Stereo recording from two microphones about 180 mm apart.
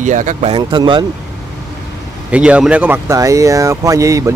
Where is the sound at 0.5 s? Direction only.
25° right (ahead or behind).